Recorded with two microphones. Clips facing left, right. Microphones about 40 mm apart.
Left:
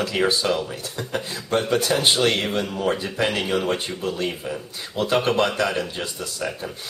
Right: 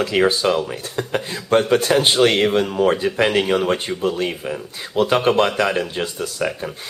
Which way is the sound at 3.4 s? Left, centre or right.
Centre.